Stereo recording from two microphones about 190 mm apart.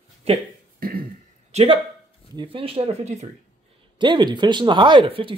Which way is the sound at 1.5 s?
30° right (ahead or behind).